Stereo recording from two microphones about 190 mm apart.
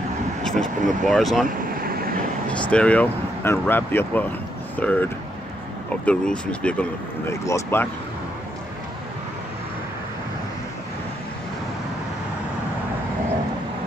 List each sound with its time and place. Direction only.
0.4 s speech: centre (ahead or behind)
1.8 s vehicle: 50° right (ahead or behind)
2.5 s speech: 5° left (ahead or behind)